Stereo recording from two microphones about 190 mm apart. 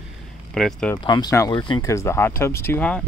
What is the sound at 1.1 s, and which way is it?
Speech, 20° left (ahead or behind).